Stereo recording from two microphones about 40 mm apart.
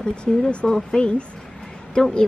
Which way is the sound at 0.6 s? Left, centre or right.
Centre.